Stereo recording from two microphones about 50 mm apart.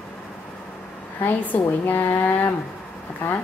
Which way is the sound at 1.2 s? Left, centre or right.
Left.